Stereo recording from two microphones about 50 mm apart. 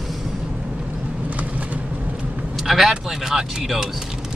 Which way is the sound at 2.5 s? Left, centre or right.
Centre.